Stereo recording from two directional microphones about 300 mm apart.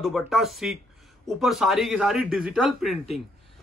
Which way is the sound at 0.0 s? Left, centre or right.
Centre.